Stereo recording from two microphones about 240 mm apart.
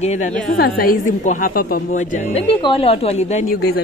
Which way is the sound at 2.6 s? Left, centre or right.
Left.